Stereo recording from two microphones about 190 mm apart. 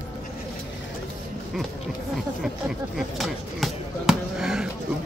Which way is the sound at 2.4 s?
Centre (ahead or behind).